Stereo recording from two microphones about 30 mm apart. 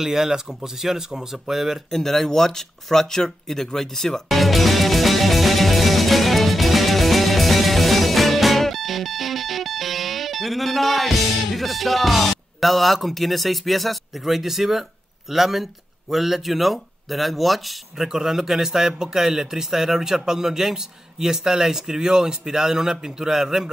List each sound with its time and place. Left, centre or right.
0.0 s speech: centre
1.9 s speech: centre
4.3 s music: centre
15.3 s speech: centre
17.9 s speech: centre